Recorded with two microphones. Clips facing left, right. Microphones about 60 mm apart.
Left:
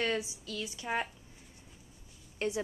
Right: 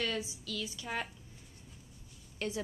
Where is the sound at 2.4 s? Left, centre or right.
Left.